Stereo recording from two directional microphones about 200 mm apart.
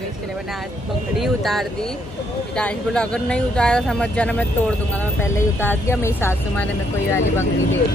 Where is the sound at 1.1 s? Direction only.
Centre (ahead or behind).